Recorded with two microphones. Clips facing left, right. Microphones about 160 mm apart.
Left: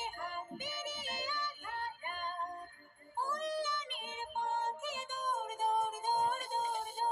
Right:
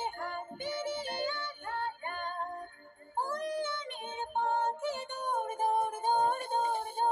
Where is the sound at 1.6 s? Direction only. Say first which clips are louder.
Right 5 dB; 30° right (ahead or behind).